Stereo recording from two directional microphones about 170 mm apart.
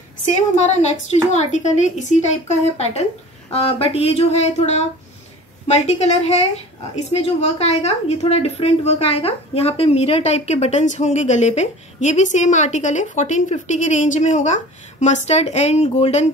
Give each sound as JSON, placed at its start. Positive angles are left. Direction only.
{"t": 0.3, "sound": "a woman's voice", "side_deg": 40}
{"t": 7.1, "sound": "a woman's voice", "side_deg": 40}